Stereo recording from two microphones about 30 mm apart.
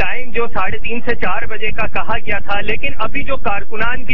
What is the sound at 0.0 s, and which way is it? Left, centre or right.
Speech, centre.